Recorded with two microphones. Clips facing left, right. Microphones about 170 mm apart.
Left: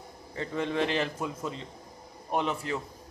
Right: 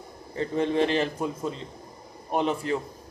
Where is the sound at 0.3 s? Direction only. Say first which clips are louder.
Right 5 dB; 35° right (ahead or behind).